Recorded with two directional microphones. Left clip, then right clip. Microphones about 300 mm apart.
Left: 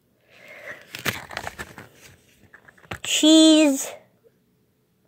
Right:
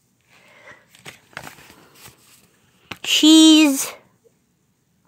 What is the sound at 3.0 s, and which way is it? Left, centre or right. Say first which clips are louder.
Speech: right 3 dB; centre.